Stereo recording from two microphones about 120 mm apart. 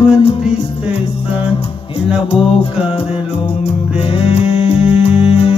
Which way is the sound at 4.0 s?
50° left (ahead or behind).